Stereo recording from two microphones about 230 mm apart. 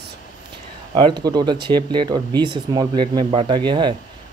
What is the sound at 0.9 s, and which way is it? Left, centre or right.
Speech, centre.